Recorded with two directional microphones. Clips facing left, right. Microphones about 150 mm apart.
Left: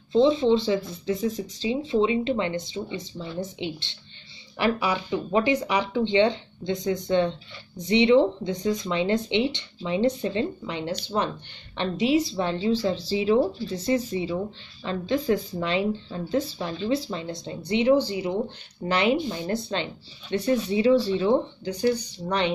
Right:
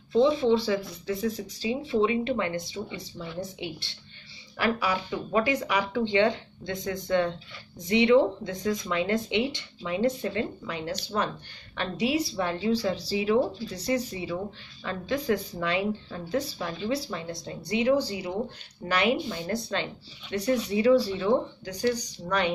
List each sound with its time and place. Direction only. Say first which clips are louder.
0.1 s speech: left 2 dB; 25° left (ahead or behind)